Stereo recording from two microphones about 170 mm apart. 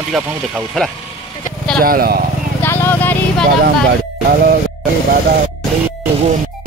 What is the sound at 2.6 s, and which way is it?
Vehicle, 15° left (ahead or behind).